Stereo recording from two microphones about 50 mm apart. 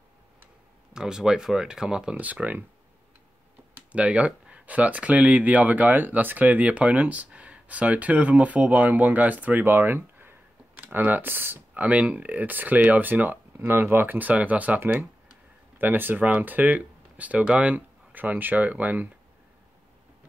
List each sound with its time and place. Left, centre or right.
0.9 s speech: centre
2.1 s speech: right
3.9 s speech: right
11.8 s speech: right
15.8 s speech: right